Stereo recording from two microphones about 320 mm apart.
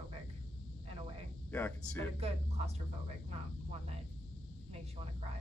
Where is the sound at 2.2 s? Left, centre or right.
Centre.